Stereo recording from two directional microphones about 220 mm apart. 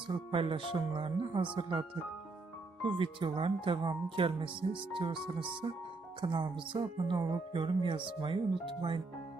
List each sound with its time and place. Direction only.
0.0 s speech: 25° right (ahead or behind)